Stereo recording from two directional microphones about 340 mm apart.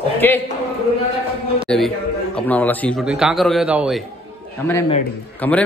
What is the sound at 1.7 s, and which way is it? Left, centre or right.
A man's voice, centre.